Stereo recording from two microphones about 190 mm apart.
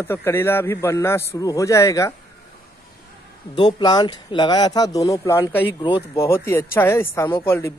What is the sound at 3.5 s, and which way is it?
Speech, 25° left (ahead or behind).